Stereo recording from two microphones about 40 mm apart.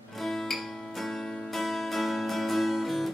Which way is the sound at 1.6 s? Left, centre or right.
Centre.